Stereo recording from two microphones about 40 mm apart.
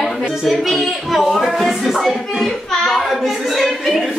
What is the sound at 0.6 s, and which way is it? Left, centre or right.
Speech, centre.